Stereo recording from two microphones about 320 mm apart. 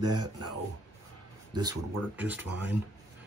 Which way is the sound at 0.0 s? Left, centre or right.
Right.